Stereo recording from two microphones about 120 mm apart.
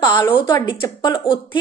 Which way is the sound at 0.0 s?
35° left (ahead or behind).